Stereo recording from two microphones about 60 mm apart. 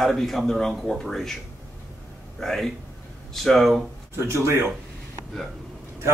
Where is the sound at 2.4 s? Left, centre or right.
Centre.